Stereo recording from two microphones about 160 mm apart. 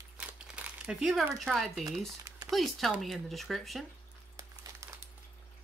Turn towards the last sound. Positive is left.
turn(degrees=-20)  # may be behind; listen again after turning